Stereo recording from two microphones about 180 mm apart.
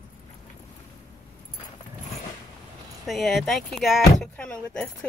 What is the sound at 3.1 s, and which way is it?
Speech, centre (ahead or behind).